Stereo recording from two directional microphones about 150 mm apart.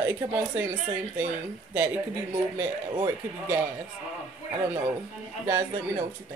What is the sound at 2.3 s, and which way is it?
A man's voice, 20° right (ahead or behind).